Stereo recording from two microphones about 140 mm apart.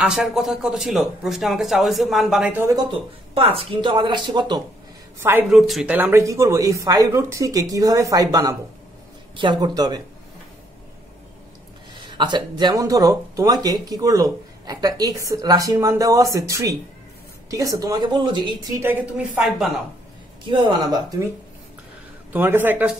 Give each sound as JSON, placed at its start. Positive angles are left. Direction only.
{"t": 0.0, "sound": "speech", "side_deg": -5}
{"t": 2.6, "sound": "speech", "side_deg": -25}
{"t": 3.3, "sound": "speech", "side_deg": -40}
{"t": 5.5, "sound": "speech", "side_deg": 0}
{"t": 5.9, "sound": "speech", "side_deg": -15}
{"t": 12.0, "sound": "speech", "side_deg": -35}
{"t": 18.8, "sound": "speech", "side_deg": -15}
{"t": 19.3, "sound": "speech", "side_deg": 0}
{"t": 20.4, "sound": "speech", "side_deg": -35}
{"t": 22.3, "sound": "speech", "side_deg": -15}